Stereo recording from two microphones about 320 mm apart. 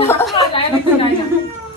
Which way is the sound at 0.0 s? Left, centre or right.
Centre.